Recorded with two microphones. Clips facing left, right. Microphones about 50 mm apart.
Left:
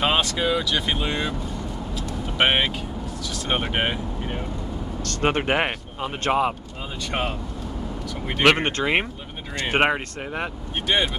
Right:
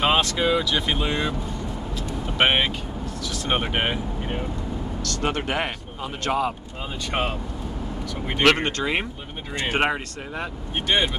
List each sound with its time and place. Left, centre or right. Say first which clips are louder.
0.0 s speech: right 1 dB; centre
2.3 s speech: even; centre
5.0 s speech: left 4 dB; left
7.1 s speech: right 1 dB; centre
8.5 s speech: left 2 dB; left